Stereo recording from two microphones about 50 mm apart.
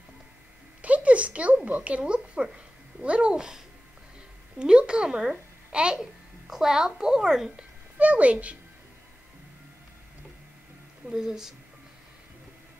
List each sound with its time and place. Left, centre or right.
0.8 s a child's voice: right; by 7.6 s centre
8.0 s speech: right
11.1 s speech: centre